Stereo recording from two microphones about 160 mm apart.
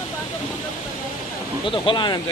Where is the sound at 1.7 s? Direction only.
30° left (ahead or behind).